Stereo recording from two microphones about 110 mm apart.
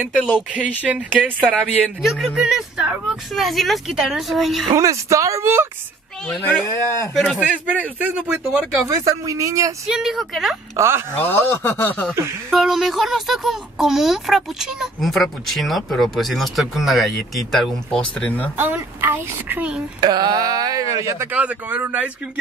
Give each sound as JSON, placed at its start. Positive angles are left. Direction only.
{"t": 0.6, "sound": "speech", "side_deg": -10}
{"t": 1.6, "sound": "speech", "side_deg": 0}
{"t": 4.7, "sound": "speech", "side_deg": -30}
{"t": 6.4, "sound": "speech", "side_deg": 15}
{"t": 7.7, "sound": "speech", "side_deg": -15}
{"t": 8.8, "sound": "speech", "side_deg": -30}
{"t": 9.8, "sound": "speech", "side_deg": -5}
{"t": 10.8, "sound": "speech", "side_deg": -20}
{"t": 11.1, "sound": "speech", "side_deg": 20}
{"t": 12.4, "sound": "speech", "side_deg": 0}
{"t": 18.6, "sound": "speech", "side_deg": -20}
{"t": 20.0, "sound": "speech", "side_deg": -40}
{"t": 21.3, "sound": "speech", "side_deg": -15}